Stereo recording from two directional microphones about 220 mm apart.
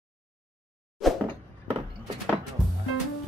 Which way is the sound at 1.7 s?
25° right (ahead or behind).